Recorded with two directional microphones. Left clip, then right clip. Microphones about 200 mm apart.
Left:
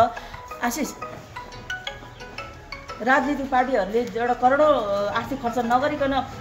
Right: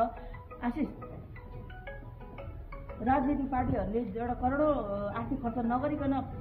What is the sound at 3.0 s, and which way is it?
A woman's voice, 25° left (ahead or behind).